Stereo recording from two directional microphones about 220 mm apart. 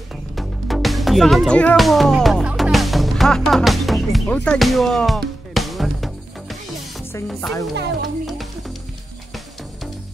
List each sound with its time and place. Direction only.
0.1 s music: centre (ahead or behind)
7.7 s speech: 50° right (ahead or behind)
8.3 s music: centre (ahead or behind)